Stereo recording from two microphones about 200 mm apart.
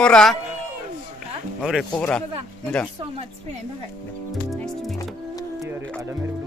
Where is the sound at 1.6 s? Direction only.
5° right (ahead or behind).